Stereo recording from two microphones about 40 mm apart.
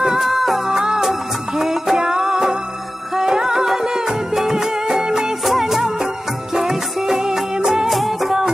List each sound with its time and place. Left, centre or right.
0.0 s music: centre
0.7 s music: centre
5.4 s music of bollywood: centre
6.5 s music: centre
7.9 s music: centre